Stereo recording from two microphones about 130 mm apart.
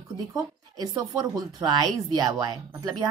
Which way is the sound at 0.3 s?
30° right (ahead or behind).